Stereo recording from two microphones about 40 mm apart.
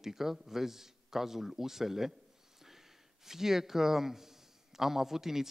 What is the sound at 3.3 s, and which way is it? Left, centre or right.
A man's voice, centre.